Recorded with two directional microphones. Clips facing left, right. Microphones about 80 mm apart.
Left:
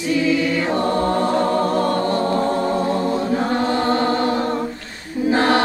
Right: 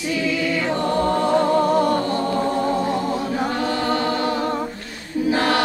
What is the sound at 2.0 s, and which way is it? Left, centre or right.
Choir, left.